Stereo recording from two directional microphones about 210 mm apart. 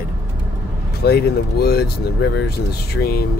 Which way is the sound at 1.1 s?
50° left (ahead or behind).